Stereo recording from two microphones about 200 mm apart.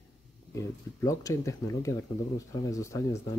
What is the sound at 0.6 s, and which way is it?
Speech, 15° left (ahead or behind).